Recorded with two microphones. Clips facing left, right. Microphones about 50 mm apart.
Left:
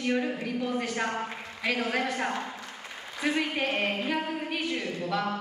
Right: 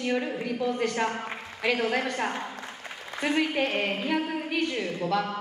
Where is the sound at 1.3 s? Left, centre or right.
Right.